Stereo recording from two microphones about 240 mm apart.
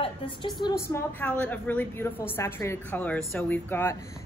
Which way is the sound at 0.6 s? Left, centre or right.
Centre.